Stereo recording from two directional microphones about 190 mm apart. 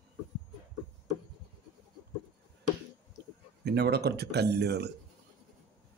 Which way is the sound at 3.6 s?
60° right (ahead or behind).